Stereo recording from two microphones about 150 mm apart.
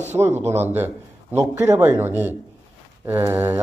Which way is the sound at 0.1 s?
15° right (ahead or behind).